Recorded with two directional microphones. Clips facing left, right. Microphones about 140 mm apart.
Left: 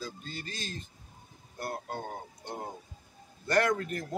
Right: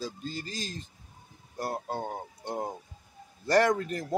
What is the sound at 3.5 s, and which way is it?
Speech, 35° right (ahead or behind).